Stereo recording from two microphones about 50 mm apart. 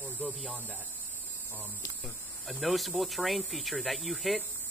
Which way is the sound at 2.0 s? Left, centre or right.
Centre.